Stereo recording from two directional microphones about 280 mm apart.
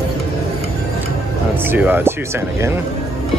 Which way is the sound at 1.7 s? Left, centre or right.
Centre.